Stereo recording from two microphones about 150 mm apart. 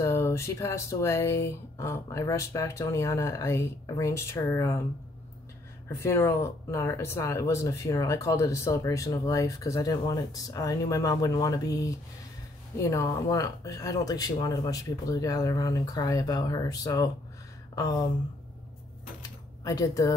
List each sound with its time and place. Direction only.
0.0 s speech: 20° left (ahead or behind)
5.9 s speech: 20° left (ahead or behind)
19.2 s a sound: 25° left (ahead or behind)